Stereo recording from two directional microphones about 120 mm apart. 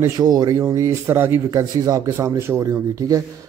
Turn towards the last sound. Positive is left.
turn(degrees=-30)  # may be behind; listen again after turning